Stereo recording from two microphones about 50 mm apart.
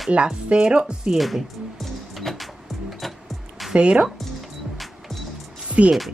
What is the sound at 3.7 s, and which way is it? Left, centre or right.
Speech, centre.